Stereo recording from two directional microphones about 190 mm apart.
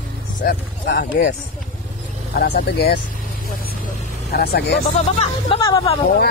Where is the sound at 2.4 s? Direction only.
65° left (ahead or behind).